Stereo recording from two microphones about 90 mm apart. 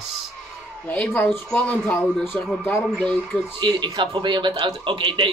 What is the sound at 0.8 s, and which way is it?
Speech, 20° left (ahead or behind).